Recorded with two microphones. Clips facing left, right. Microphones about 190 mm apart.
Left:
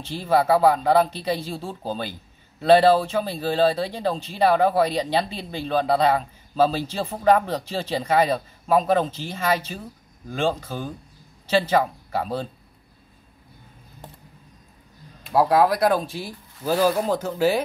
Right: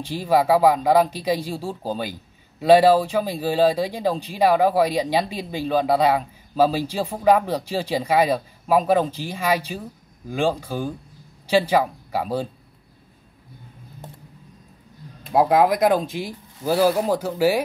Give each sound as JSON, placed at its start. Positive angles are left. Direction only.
{"t": 0.0, "sound": "speech", "side_deg": -15}
{"t": 15.3, "sound": "speech", "side_deg": -15}